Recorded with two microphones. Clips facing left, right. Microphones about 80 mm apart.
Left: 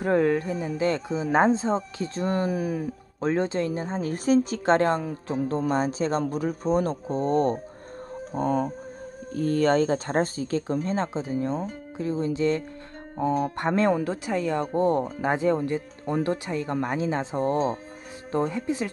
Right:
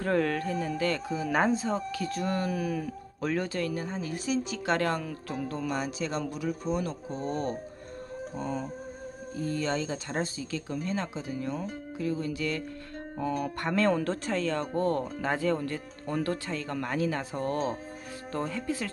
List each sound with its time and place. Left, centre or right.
0.0 s speech: centre
4.0 s a man's voice: left
4.7 s a man's voice: left
8.4 s speech: left
14.0 s speech: centre